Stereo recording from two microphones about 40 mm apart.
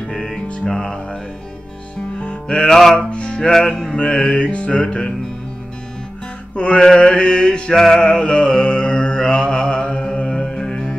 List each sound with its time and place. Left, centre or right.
0.1 s music: centre
2.1 s music: left
2.7 s music: centre
3.0 s music: left
6.5 s music: left; by 8.1 s centre
8.1 s mantra: left
10.3 s music: centre